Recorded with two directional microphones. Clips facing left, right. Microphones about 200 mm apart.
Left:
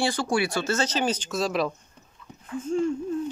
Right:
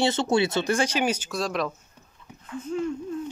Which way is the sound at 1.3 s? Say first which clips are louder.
Left 2 dB; centre (ahead or behind).